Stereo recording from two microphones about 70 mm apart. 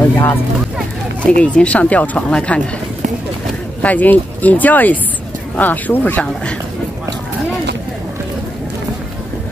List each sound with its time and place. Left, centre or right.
0.1 s speech: left
1.2 s speech: centre
3.8 s speech: left